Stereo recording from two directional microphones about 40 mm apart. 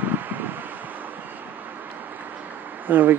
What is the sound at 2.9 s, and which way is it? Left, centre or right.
Speech, right.